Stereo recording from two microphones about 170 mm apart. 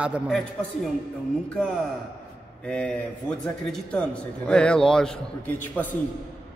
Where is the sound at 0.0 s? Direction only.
5° right (ahead or behind).